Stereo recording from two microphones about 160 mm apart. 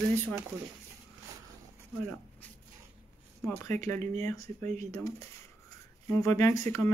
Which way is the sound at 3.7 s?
45° right (ahead or behind).